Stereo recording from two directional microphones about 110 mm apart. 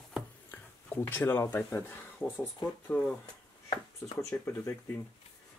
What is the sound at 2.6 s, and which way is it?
Speech, 40° left (ahead or behind).